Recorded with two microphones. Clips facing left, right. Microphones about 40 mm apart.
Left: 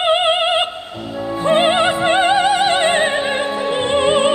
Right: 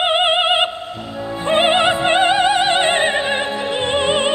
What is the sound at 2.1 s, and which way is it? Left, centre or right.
Music, right.